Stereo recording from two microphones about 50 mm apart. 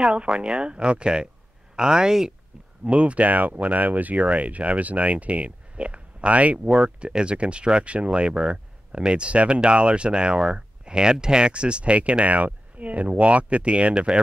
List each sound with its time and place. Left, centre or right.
0.0 s speech: centre